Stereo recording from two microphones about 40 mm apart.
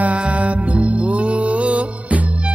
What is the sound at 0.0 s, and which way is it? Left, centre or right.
Music, right.